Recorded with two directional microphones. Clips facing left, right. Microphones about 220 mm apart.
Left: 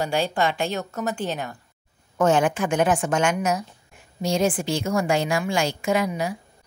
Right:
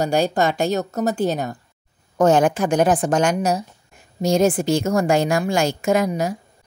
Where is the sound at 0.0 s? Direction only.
45° right (ahead or behind).